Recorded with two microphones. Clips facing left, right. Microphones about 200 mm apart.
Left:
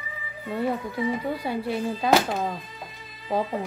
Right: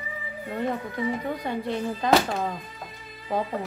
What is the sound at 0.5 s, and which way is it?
Speech, 10° left (ahead or behind).